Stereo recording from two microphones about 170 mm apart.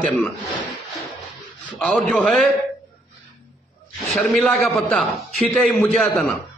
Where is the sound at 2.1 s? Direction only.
5° left (ahead or behind).